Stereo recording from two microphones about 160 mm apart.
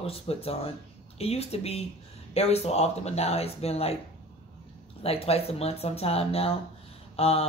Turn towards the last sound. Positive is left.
turn(degrees=40)  # may be behind; listen again after turning